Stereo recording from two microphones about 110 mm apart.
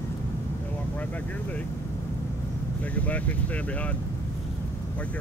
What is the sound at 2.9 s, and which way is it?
Speech, 15° left (ahead or behind).